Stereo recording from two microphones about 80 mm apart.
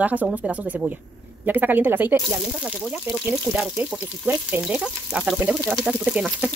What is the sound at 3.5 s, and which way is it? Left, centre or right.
Speech, centre.